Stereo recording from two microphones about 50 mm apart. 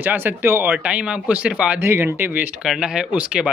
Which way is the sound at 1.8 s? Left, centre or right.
Right.